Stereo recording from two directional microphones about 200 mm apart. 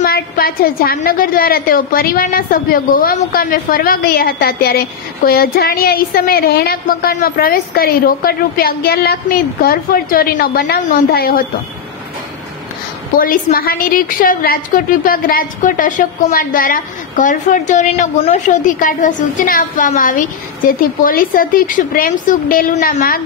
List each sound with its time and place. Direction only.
0.0 s a woman's voice: 50° left (ahead or behind)
13.2 s a woman's voice: 45° left (ahead or behind)